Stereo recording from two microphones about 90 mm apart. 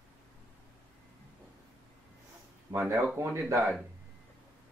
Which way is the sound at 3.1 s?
30° right (ahead or behind).